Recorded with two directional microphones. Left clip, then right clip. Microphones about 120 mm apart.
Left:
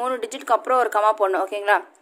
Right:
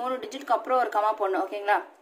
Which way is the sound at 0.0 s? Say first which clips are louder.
Left 5 dB; 90° left.